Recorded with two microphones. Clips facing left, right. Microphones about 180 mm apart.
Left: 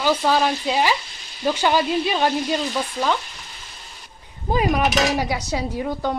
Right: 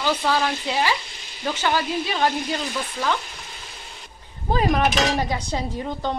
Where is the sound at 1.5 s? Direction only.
15° left (ahead or behind).